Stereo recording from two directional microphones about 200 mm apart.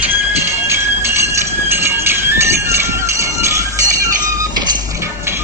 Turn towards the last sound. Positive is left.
turn(degrees=-15)  # may be behind; listen again after turning